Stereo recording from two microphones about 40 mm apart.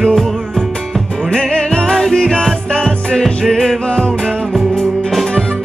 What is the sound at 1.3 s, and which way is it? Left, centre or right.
Music, centre.